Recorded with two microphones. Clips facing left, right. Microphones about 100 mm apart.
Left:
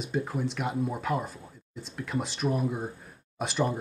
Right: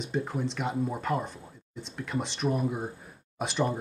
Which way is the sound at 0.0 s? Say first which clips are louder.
Even; centre (ahead or behind).